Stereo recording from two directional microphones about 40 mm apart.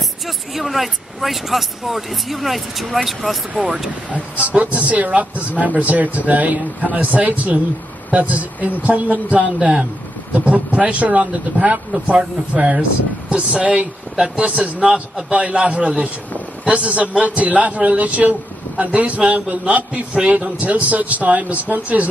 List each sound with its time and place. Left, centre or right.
0.6 s speech: centre
4.1 s a man's voice: right
15.3 s speech: right